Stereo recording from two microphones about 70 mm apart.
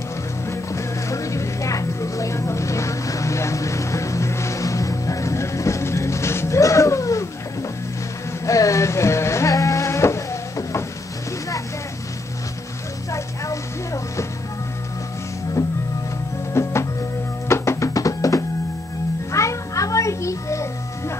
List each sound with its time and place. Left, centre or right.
0.5 s music: left
8.5 s a sound: left
13.1 s music: left
15.6 s music: left